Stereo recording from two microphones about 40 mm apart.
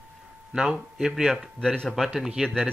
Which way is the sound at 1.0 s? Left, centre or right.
Centre.